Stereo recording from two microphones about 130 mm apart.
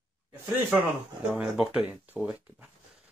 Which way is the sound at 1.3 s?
5° right (ahead or behind).